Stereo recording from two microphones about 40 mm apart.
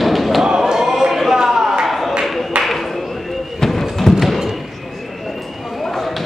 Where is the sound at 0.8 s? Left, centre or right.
Centre.